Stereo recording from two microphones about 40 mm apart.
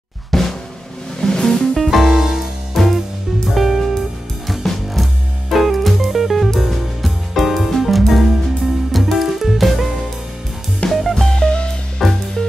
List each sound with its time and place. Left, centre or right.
0.3 s drum: centre
1.2 s music: centre
1.8 s music: centre
2.8 s music: centre
10.9 s music: centre
11.2 s music: centre
12.0 s music: centre